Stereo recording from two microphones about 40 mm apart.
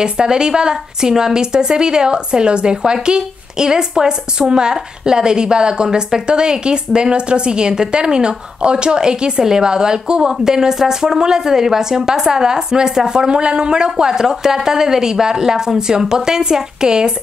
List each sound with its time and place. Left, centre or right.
0.0 s a woman's voice: right